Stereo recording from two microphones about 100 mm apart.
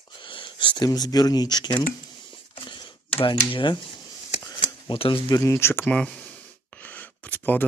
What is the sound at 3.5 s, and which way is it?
Speech, 60° left (ahead or behind).